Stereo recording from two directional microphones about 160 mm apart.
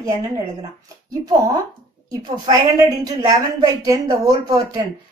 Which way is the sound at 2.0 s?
25° right (ahead or behind).